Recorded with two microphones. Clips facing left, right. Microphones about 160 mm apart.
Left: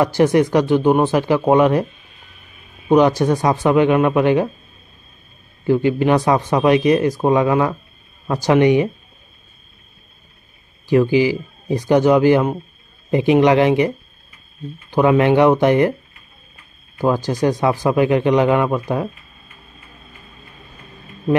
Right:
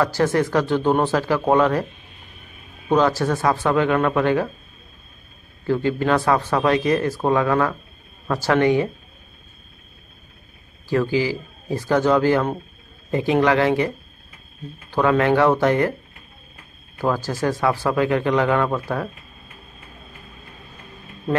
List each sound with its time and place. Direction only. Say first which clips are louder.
0.0 s speech: left 5 dB; 15° left (ahead or behind)
2.9 s speech: left 5 dB; 15° left (ahead or behind)
5.7 s speech: left 4 dB; 15° left (ahead or behind)
10.9 s speech: left 6 dB; 15° left (ahead or behind)
17.0 s speech: left 5 dB; 15° left (ahead or behind)